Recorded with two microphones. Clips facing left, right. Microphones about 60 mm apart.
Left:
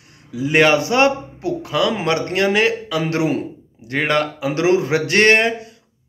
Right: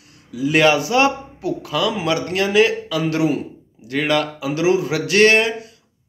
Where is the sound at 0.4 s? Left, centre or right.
Left.